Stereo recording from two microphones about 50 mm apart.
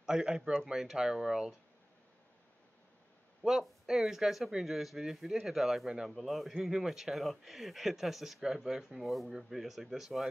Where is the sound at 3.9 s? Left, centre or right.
Centre.